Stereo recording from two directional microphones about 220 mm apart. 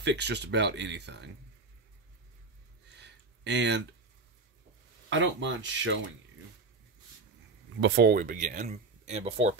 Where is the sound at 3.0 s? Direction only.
50° right (ahead or behind).